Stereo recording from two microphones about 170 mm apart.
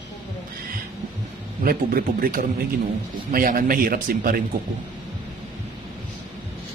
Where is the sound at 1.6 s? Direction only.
55° right (ahead or behind).